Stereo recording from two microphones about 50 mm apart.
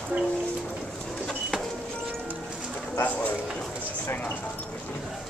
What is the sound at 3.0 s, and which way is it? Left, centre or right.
Speech, left.